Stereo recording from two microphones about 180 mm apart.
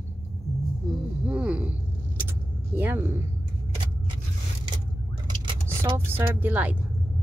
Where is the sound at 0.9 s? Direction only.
Centre (ahead or behind).